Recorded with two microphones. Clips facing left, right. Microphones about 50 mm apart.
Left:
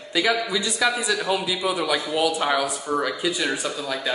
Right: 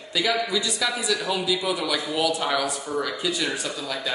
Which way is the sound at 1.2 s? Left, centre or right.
Centre.